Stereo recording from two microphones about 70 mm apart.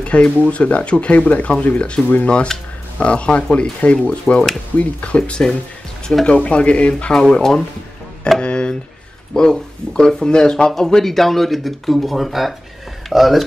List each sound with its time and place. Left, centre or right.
0.0 s speech: centre
8.4 s a sound: centre
9.3 s speech: centre